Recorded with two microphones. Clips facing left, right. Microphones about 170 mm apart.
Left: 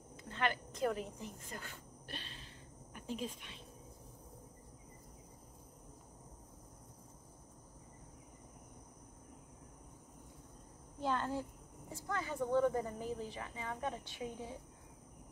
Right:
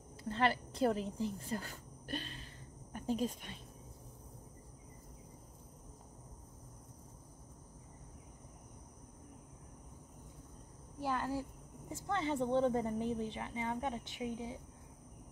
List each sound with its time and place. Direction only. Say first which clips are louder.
0.2 s speech: right 4 dB; 35° right (ahead or behind)
11.0 s speech: even; 10° right (ahead or behind)
11.9 s speech: right 5 dB; 25° right (ahead or behind)